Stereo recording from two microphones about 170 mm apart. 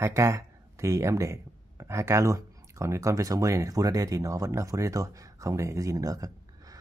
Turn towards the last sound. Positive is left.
turn(degrees=-20)  # may be behind; listen again after turning